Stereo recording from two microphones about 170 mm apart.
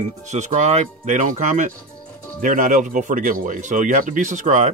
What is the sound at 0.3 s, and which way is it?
Speech, 45° right (ahead or behind).